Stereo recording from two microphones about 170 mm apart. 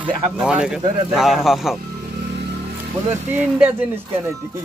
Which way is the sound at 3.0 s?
10° right (ahead or behind).